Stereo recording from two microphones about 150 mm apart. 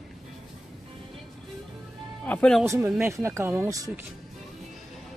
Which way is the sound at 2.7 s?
15° right (ahead or behind).